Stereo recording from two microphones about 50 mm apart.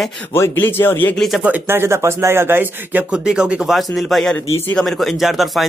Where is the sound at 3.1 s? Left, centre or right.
Right.